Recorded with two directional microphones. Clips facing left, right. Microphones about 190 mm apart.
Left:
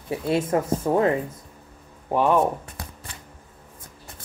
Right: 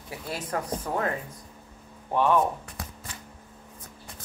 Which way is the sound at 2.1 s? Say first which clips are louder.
Left 3 dB; 15° left (ahead or behind).